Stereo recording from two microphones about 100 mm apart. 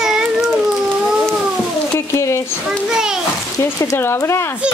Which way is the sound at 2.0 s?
30° left (ahead or behind).